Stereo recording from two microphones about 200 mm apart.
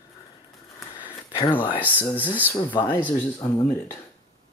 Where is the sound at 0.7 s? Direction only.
10° right (ahead or behind).